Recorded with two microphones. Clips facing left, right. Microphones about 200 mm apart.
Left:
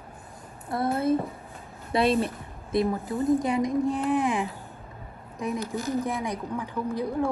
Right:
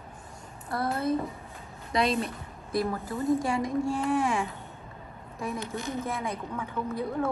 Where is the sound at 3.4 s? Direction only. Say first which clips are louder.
Left 3 dB; 20° left (ahead or behind).